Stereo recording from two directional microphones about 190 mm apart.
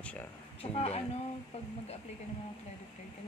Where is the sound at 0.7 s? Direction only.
30° left (ahead or behind).